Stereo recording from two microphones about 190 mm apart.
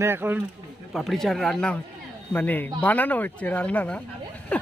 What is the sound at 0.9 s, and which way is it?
Speech, centre (ahead or behind).